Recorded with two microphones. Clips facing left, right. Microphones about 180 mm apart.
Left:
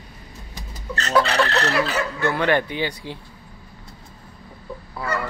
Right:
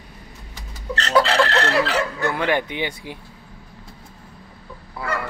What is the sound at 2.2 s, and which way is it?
Speech, 15° right (ahead or behind).